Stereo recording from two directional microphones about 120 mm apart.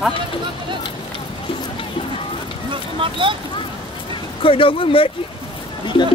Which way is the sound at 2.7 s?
45° right (ahead or behind).